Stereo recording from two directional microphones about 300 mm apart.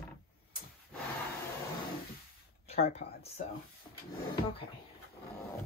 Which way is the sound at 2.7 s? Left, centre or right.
Left.